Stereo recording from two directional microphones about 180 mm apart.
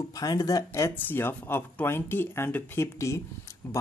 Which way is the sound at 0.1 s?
20° left (ahead or behind).